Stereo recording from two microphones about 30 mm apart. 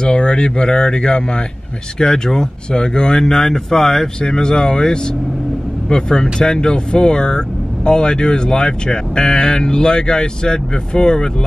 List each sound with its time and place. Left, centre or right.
0.0 s speech: left